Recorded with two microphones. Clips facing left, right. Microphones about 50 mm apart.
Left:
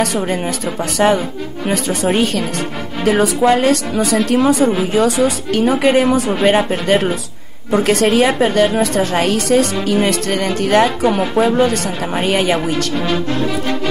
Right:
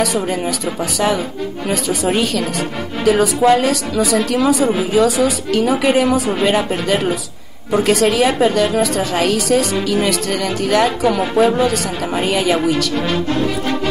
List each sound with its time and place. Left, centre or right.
0.3 s a woman's voice: left